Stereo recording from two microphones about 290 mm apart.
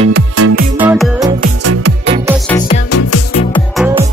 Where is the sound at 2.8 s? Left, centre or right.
Left.